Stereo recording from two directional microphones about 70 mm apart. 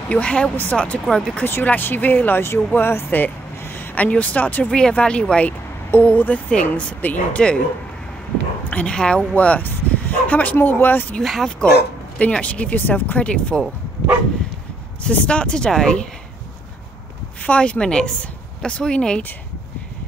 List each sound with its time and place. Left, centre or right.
0.1 s speech: centre
1.4 s speech: left
2.7 s a sound: left
3.9 s speech: left
4.6 s speech: centre
8.6 s speech: centre
11.2 s speech: centre
12.2 s speech: centre
15.0 s speech: centre
17.4 s speech: centre